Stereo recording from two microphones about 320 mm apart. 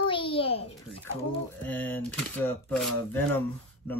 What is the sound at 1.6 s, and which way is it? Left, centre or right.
Speech, centre.